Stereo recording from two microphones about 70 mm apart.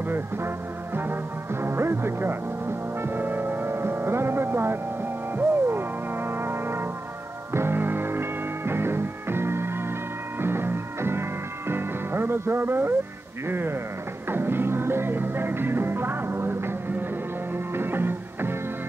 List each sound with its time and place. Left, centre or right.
0.9 s music: right